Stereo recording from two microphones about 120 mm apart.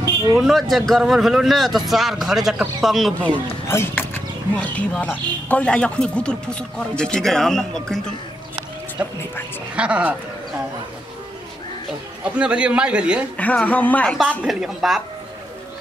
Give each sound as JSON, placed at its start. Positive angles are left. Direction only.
{"t": 0.0, "sound": "a sound", "side_deg": -30}
{"t": 0.4, "sound": "speech", "side_deg": 0}
{"t": 3.6, "sound": "a sound", "side_deg": 20}
{"t": 4.7, "sound": "a man's voice", "side_deg": 10}
{"t": 9.8, "sound": "a man's voice", "side_deg": -10}
{"t": 12.4, "sound": "a man's voice", "side_deg": -10}
{"t": 13.4, "sound": "a man's voice", "side_deg": 10}
{"t": 14.4, "sound": "speech", "side_deg": -5}